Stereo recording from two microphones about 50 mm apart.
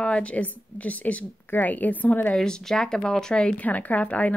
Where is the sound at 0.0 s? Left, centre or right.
Left.